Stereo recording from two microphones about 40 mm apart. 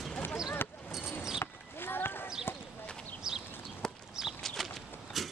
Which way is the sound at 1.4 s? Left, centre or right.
Left.